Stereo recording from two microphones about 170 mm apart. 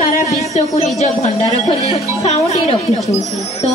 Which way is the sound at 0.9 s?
40° left (ahead or behind).